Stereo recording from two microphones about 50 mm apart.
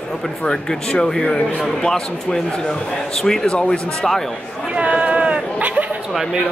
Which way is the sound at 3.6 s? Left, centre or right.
Centre.